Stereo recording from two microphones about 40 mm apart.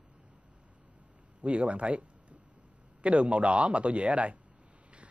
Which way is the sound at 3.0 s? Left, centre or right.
Right.